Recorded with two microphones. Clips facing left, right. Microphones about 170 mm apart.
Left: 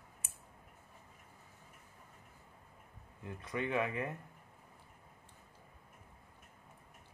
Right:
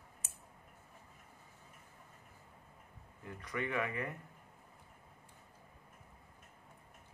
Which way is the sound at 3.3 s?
25° left (ahead or behind).